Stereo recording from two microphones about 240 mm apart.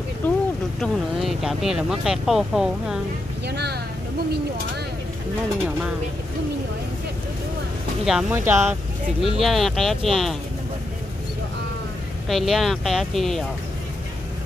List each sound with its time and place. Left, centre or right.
0.2 s a sound: centre
0.7 s speech: centre
3.4 s vehicle: right
8.0 s speech: centre
12.3 s speech: centre